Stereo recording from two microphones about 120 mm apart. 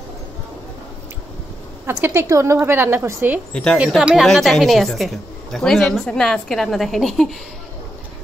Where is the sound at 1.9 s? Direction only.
20° right (ahead or behind).